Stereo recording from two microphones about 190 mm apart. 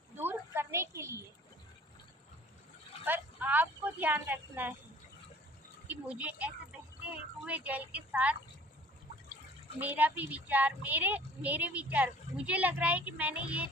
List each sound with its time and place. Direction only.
0.2 s a sound: 10° right (ahead or behind)
3.1 s speech: 10° right (ahead or behind)
5.9 s speech: 5° right (ahead or behind)
9.8 s speech: 10° right (ahead or behind)